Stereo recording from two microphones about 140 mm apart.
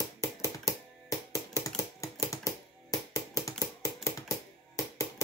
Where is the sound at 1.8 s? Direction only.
25° left (ahead or behind).